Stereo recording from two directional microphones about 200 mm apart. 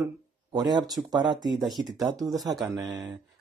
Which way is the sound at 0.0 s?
20° right (ahead or behind).